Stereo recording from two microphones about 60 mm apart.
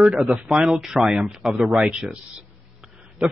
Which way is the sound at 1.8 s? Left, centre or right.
Centre.